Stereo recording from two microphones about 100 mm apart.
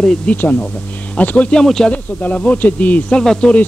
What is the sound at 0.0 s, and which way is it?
Speech, 10° left (ahead or behind).